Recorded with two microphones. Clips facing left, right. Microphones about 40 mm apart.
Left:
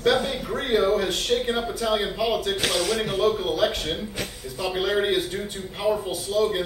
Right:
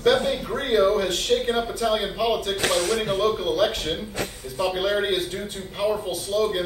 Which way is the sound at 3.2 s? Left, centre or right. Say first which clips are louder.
Left 1 dB; centre.